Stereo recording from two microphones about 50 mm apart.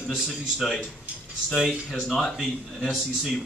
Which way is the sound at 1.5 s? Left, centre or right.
Centre.